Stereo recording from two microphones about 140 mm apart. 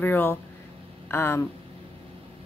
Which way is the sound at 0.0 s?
15° left (ahead or behind).